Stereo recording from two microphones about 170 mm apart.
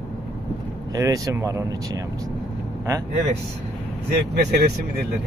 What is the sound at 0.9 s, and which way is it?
Speech, 20° right (ahead or behind).